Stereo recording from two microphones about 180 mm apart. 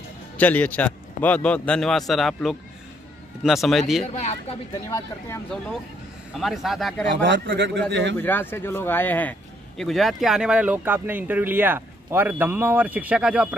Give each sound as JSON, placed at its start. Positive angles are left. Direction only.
{"t": 0.4, "sound": "a man's voice", "side_deg": 10}
{"t": 4.0, "sound": "speech", "side_deg": 40}
{"t": 4.8, "sound": "a man's voice", "side_deg": 15}
{"t": 6.3, "sound": "speech", "side_deg": 0}
{"t": 7.2, "sound": "a man's voice", "side_deg": -80}
{"t": 8.2, "sound": "speech", "side_deg": 10}